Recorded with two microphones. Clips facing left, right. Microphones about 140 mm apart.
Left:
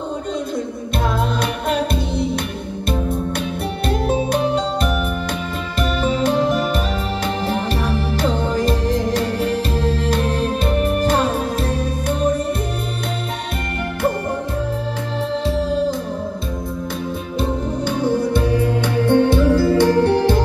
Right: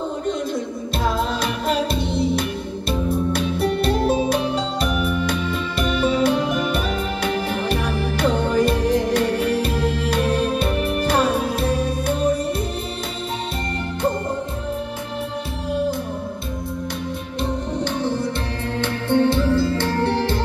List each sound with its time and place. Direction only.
3.3 s music: 50° left (ahead or behind)
17.8 s music: 10° left (ahead or behind)